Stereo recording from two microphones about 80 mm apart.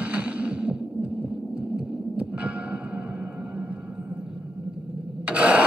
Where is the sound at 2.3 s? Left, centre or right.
Centre.